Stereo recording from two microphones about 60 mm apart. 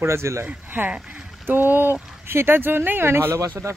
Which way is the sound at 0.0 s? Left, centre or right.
Right.